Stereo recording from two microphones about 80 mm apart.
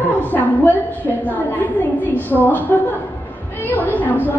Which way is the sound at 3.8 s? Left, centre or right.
Left.